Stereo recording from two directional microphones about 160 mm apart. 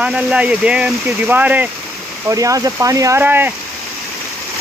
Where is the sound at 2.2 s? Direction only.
20° right (ahead or behind).